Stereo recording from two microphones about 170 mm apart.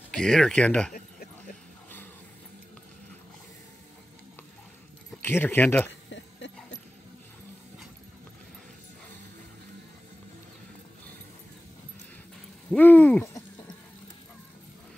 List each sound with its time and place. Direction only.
0.1 s speech: 5° left (ahead or behind)
5.2 s hoot: 10° left (ahead or behind)
5.9 s a sound: 90° left
12.6 s hoot: 10° left (ahead or behind)